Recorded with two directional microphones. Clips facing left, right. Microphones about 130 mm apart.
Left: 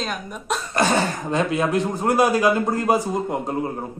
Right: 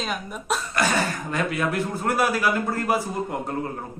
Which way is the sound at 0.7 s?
25° left (ahead or behind).